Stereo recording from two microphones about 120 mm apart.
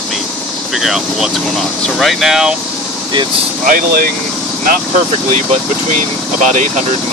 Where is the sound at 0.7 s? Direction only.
Centre (ahead or behind).